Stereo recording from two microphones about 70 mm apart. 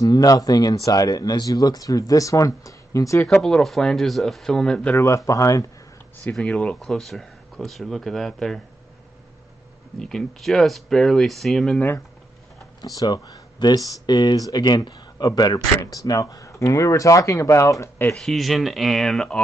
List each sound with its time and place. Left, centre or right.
0.0 s speech: left
3.3 s speech: centre
4.9 s speech: left
6.2 s speech: centre
9.9 s speech: centre
12.8 s speech: left
18.1 s speech: centre